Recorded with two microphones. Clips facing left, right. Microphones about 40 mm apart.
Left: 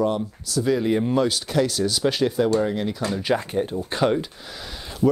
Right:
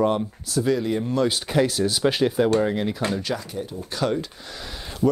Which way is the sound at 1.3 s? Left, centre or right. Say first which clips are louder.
Right 1 dB; centre.